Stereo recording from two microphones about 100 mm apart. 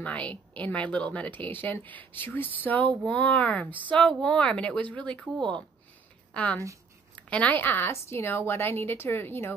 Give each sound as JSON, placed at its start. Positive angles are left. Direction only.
{"t": 0.0, "sound": "speech", "side_deg": 15}
{"t": 3.6, "sound": "speech", "side_deg": -15}
{"t": 3.9, "sound": "a woman's voice", "side_deg": 5}